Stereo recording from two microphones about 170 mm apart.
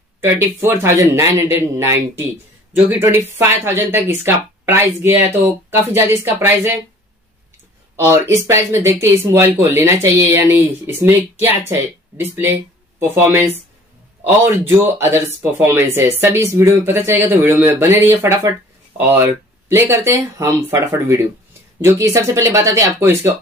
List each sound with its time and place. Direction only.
0.2 s speech: 15° right (ahead or behind)
7.9 s speech: 15° right (ahead or behind)
14.7 s speech: 15° right (ahead or behind)